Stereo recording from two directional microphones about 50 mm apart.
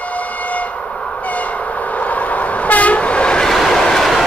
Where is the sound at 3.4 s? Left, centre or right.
Centre.